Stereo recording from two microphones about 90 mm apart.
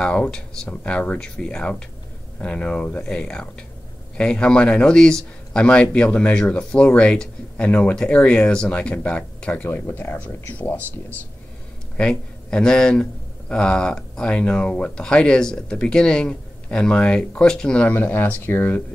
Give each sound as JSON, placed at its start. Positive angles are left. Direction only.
{"t": 0.0, "sound": "speech", "side_deg": 10}
{"t": 9.7, "sound": "speech", "side_deg": 25}
{"t": 12.0, "sound": "speech", "side_deg": 10}
{"t": 17.9, "sound": "speech", "side_deg": 25}